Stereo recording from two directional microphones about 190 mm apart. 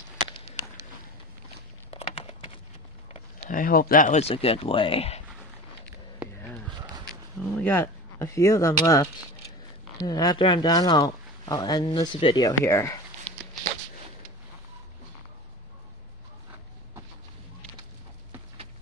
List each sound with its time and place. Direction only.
1.9 s a sound: 30° left (ahead or behind)
3.1 s speech: 45° left (ahead or behind)
7.1 s speech: 5° left (ahead or behind)